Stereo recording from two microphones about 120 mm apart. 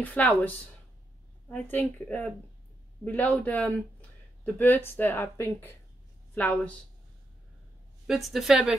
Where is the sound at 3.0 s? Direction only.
15° left (ahead or behind).